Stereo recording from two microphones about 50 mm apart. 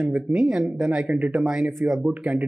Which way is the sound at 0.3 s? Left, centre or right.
Centre.